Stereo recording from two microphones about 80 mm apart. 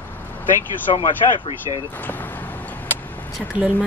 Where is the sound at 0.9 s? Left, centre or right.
Left.